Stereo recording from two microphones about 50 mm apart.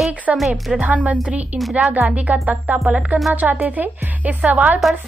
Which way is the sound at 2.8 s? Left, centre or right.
Centre.